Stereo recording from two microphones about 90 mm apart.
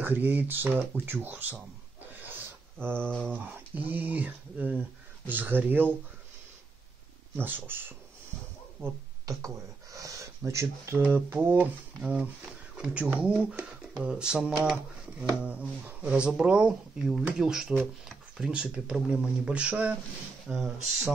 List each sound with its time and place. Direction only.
0.0 s speech: 20° right (ahead or behind)
2.2 s a sound: 25° right (ahead or behind)
3.3 s speech: 20° right (ahead or behind)
7.3 s speech: 20° right (ahead or behind)
8.8 s speech: 5° left (ahead or behind)
9.2 s speech: 40° right (ahead or behind); by 21.1 s 5° right (ahead or behind)